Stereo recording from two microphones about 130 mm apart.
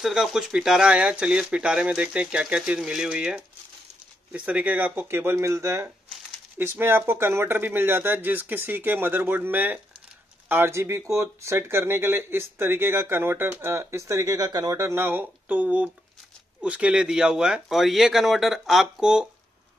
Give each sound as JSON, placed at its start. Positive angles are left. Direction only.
{"t": 0.0, "sound": "speech", "side_deg": -5}